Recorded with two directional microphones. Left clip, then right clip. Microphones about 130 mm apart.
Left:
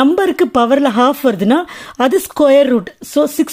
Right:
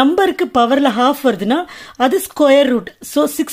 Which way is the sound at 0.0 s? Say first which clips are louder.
Left 1 dB; 30° left (ahead or behind).